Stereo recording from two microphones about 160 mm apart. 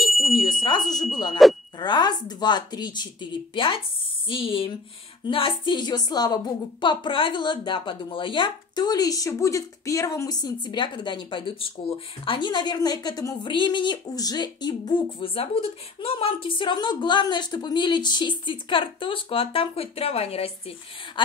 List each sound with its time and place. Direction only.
0.4 s speech: 30° left (ahead or behind)
1.4 s speech: centre (ahead or behind)
1.8 s a woman's voice: 25° left (ahead or behind)
12.3 s a woman's voice: 30° left (ahead or behind)